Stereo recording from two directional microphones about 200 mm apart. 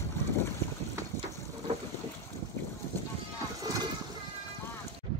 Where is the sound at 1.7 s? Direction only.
35° right (ahead or behind).